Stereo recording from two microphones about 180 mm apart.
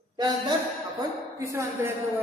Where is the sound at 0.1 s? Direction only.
20° right (ahead or behind).